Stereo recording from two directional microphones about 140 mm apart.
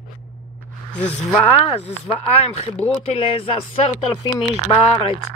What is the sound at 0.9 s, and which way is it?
Speech, 10° left (ahead or behind).